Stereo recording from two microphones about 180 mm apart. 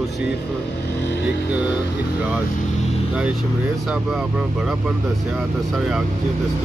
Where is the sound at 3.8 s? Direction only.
5° right (ahead or behind).